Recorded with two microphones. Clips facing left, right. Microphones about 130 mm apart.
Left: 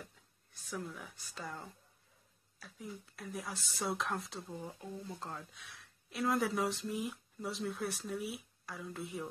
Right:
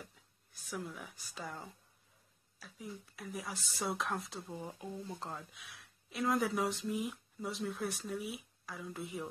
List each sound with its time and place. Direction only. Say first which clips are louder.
0.0 s speech: even; centre (ahead or behind)
4.6 s speech: right 2 dB; 15° right (ahead or behind)
5.3 s speech: even; centre (ahead or behind)